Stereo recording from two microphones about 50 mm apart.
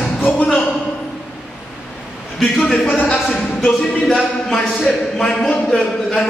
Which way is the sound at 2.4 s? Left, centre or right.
Centre.